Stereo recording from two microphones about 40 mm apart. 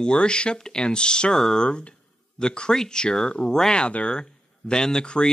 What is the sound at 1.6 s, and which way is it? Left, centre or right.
Speech, left.